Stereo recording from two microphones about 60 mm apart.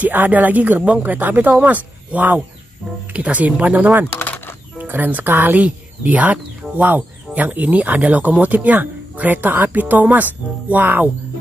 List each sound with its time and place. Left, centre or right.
0.0 s speech: right